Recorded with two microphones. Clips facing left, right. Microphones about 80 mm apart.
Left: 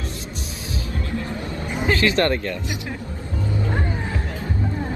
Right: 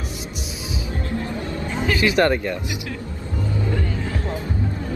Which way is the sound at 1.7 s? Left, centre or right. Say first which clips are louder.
Left 2 dB; centre.